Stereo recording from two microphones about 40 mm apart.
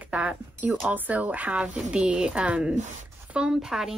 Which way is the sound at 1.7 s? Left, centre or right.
Right.